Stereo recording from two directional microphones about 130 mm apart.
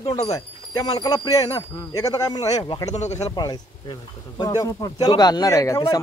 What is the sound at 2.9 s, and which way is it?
Speech, 60° left (ahead or behind).